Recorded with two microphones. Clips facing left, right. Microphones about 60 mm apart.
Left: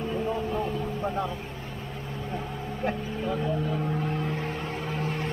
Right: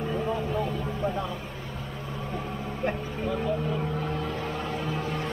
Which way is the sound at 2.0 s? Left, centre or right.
Right.